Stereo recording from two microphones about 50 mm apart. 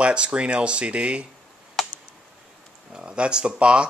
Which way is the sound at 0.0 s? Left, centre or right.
Right.